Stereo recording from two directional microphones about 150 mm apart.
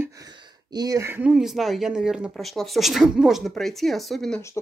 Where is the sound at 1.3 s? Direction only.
5° right (ahead or behind).